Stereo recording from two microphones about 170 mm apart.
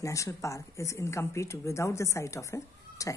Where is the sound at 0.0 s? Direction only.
20° left (ahead or behind).